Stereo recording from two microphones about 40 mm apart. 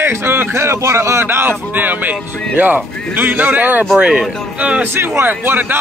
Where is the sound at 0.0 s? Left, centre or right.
Right.